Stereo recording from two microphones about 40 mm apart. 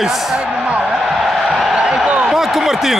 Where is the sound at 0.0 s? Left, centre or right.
Centre.